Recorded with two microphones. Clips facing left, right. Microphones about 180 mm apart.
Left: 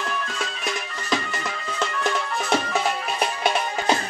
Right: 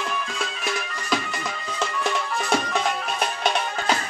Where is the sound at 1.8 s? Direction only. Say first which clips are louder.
Left 1 dB; centre (ahead or behind).